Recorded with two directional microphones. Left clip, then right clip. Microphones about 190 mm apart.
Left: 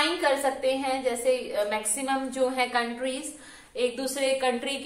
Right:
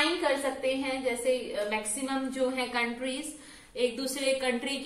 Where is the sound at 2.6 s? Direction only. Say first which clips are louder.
Left 4 dB; 50° right (ahead or behind).